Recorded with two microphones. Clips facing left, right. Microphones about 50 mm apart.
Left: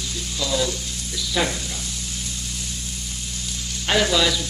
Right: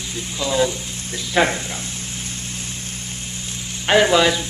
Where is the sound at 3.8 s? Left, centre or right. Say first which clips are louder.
Right 5 dB; right.